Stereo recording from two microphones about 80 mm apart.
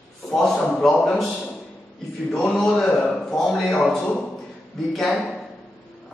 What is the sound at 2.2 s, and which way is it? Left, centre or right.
A man's voice, centre.